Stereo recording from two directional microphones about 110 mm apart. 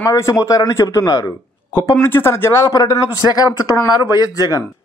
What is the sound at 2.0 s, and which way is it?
Speech, 20° left (ahead or behind).